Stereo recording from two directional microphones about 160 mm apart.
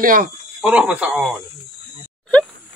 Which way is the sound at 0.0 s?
60° right (ahead or behind).